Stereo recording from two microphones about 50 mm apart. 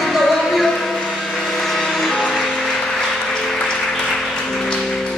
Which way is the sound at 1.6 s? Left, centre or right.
Centre.